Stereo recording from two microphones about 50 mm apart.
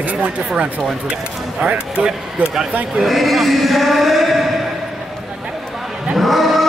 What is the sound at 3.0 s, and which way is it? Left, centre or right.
Speech, centre.